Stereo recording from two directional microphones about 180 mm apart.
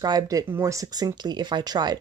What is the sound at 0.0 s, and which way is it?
Speech, 20° right (ahead or behind).